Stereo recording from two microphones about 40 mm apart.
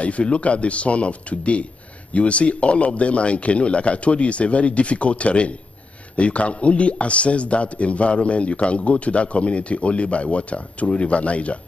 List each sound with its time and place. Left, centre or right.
0.0 s a man's voice: left